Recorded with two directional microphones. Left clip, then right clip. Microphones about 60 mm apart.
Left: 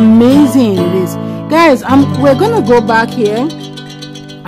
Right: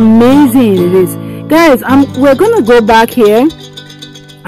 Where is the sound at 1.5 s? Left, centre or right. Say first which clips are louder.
Right 2 dB; right.